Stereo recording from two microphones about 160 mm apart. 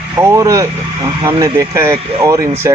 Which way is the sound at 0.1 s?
15° right (ahead or behind).